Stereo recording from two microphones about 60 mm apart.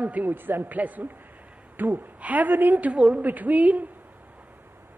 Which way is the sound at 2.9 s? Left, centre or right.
Centre.